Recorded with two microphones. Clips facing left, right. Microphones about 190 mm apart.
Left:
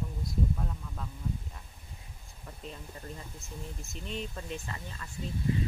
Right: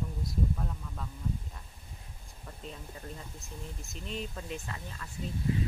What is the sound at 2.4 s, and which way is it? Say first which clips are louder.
Speech: even; centre (ahead or behind).